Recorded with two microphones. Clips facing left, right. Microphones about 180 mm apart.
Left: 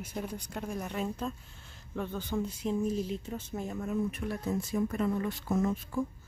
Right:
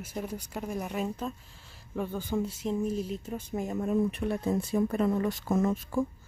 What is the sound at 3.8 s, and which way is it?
Speech, 30° right (ahead or behind).